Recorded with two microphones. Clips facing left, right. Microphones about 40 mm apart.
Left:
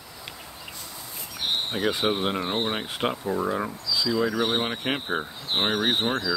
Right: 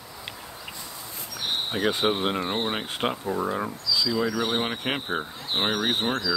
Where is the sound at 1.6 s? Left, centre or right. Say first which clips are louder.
Right 2 dB; centre.